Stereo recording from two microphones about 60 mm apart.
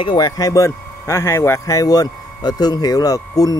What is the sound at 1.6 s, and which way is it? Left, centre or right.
Speech, left.